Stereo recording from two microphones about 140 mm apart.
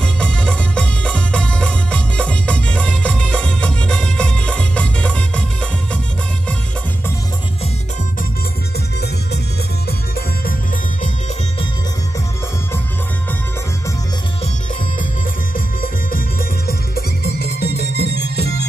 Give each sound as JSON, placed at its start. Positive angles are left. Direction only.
{"t": 0.0, "sound": "music", "side_deg": 5}
{"t": 15.5, "sound": "music", "side_deg": 85}